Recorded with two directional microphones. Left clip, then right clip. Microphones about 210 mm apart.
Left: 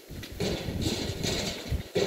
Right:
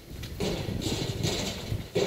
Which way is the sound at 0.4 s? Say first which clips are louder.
Even; 5° right (ahead or behind).